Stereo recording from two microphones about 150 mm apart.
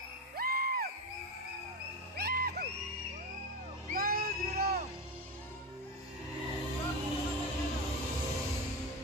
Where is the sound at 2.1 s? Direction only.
90° right.